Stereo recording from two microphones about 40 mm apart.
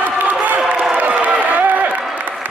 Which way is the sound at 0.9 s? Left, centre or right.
Right.